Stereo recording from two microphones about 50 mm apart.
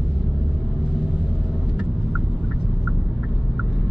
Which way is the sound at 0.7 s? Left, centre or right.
Centre.